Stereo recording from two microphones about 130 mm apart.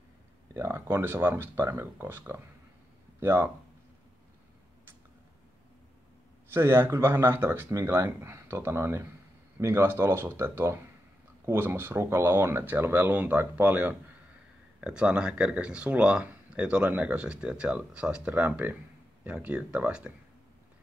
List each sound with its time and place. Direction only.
0.6 s speech: 20° right (ahead or behind)
6.5 s speech: 20° right (ahead or behind)